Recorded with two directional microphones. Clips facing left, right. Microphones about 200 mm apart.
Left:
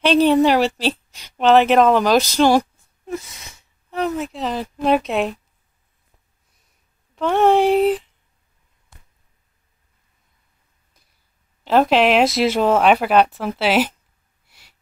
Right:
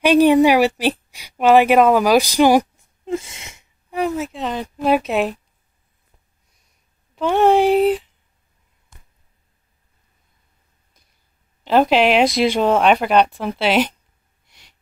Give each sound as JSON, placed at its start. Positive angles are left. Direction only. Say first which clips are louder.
{"t": 0.0, "sound": "a woman's voice", "louder": "right 2 dB", "side_deg": -15}
{"t": 3.1, "sound": "a sound", "louder": "right 4 dB", "side_deg": -25}
{"t": 3.9, "sound": "speech", "louder": "right 1 dB", "side_deg": -10}
{"t": 7.2, "sound": "speech", "louder": "right 1 dB", "side_deg": 0}
{"t": 11.6, "sound": "speech", "louder": "even", "side_deg": 0}
{"t": 14.4, "sound": "a sound", "louder": "right 1 dB", "side_deg": 5}